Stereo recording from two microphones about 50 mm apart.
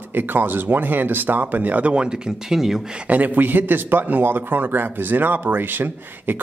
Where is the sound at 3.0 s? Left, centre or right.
Right.